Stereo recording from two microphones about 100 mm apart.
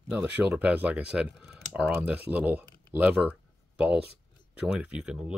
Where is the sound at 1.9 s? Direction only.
20° right (ahead or behind).